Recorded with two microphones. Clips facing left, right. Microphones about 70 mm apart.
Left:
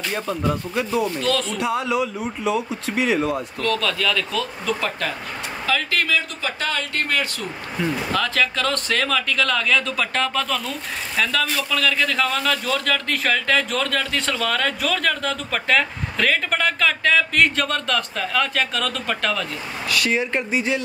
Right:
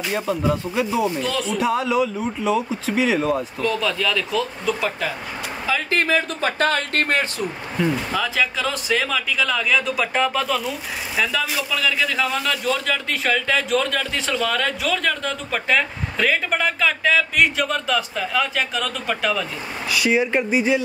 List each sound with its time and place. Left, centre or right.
0.1 s speech: centre
1.6 s a man's voice: centre
3.6 s speech: centre
5.9 s speech: right
7.7 s a man's voice: centre